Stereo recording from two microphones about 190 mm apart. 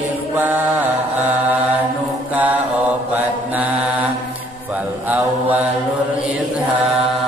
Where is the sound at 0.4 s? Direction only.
10° right (ahead or behind).